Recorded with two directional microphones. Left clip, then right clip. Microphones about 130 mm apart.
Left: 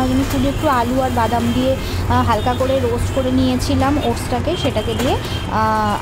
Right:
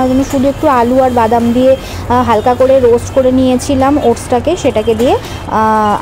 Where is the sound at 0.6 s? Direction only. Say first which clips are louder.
Right 8 dB; 45° right (ahead or behind).